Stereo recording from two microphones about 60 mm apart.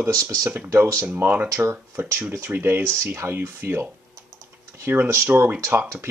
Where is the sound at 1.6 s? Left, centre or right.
Right.